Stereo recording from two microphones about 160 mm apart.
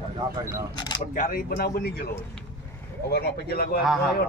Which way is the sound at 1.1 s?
60° left (ahead or behind).